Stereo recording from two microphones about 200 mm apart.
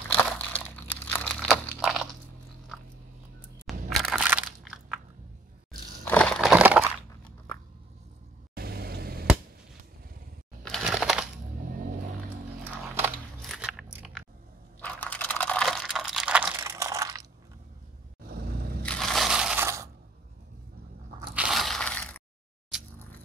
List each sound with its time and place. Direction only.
0.2 s crumpling: 10° left (ahead or behind)
3.7 s crushing: centre (ahead or behind)
4.0 s crunch: 5° right (ahead or behind)
6.0 s a sound: 5° left (ahead or behind)
8.5 s vehicle: 50° right (ahead or behind)
10.6 s a sound: centre (ahead or behind)
12.7 s biting: 10° right (ahead or behind)
13.4 s scissors: centre (ahead or behind)
14.8 s a sound: 10° left (ahead or behind); by 17.3 s 15° right (ahead or behind)
18.2 s vehicle: 50° right (ahead or behind)
18.9 s crushing: centre (ahead or behind); by 19.9 s 15° right (ahead or behind)
21.4 s crushing: centre (ahead or behind)